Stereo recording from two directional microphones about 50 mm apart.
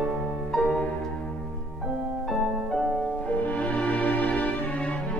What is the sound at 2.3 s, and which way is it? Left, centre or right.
Music, centre.